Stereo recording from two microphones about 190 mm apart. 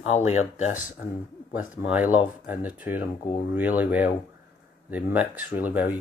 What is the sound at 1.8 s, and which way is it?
Speech, 10° right (ahead or behind).